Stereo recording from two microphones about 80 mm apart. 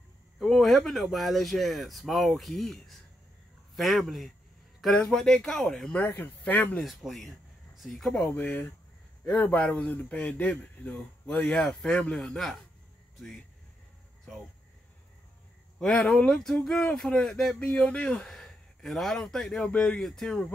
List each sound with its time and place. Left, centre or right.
0.4 s speech: centre
5.9 s speech: left
6.8 s speech: centre
8.3 s speech: left; by 12.5 s centre
15.8 s speech: centre
18.2 s speech: centre
19.6 s speech: centre
20.0 s speech: centre